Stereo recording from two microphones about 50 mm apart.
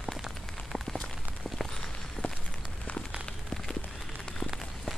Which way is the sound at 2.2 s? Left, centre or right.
Left.